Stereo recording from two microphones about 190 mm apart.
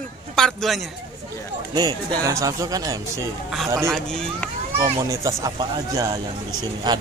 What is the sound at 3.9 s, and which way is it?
Speech, 5° left (ahead or behind).